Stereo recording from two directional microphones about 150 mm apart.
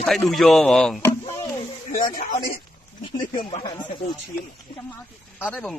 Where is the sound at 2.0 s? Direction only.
65° left (ahead or behind).